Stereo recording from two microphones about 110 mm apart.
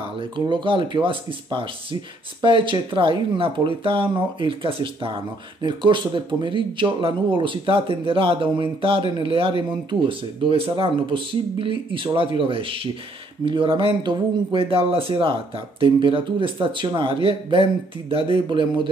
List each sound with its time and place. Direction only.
0.2 s speech: 50° right (ahead or behind)